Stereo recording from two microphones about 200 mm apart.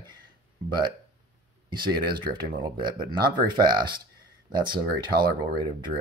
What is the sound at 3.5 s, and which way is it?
Speech, 20° right (ahead or behind).